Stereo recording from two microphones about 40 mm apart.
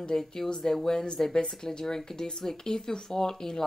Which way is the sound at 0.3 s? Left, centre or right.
Centre.